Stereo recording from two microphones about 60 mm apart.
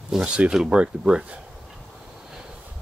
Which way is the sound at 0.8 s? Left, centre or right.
Centre.